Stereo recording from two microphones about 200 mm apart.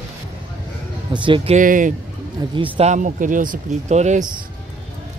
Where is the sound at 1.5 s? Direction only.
40° right (ahead or behind).